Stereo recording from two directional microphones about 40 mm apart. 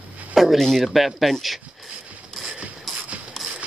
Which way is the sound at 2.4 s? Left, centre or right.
Right.